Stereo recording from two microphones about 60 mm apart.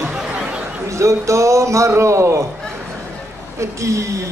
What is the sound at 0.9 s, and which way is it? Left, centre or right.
A man's voice, right.